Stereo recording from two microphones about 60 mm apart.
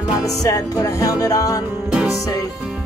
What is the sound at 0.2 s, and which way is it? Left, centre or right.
Music, left.